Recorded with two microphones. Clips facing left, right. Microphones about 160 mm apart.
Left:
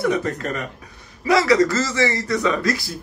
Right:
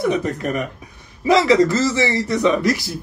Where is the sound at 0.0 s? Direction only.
20° right (ahead or behind).